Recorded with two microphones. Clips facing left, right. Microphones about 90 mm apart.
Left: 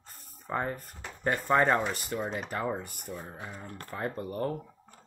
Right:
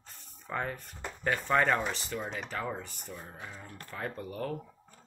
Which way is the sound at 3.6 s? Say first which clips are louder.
Left 4 dB; 45° left (ahead or behind).